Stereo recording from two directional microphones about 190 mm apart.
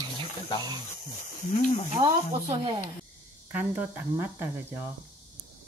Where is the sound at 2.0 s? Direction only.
25° right (ahead or behind).